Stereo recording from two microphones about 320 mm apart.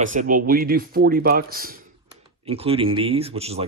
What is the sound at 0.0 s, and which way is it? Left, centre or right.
Speech, right.